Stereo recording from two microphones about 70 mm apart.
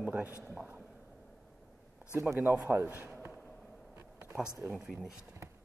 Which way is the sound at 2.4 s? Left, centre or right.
Right.